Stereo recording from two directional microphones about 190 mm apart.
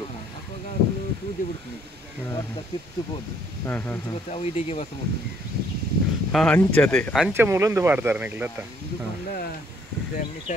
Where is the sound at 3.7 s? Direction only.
10° left (ahead or behind).